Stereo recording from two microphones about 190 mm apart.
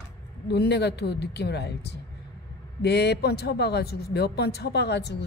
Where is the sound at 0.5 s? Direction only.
60° left (ahead or behind).